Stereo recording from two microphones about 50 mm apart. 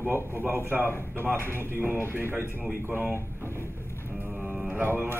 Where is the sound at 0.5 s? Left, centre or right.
Right.